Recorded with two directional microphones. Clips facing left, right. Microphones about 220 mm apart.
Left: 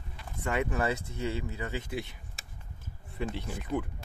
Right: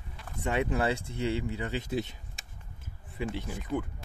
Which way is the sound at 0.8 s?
30° right (ahead or behind).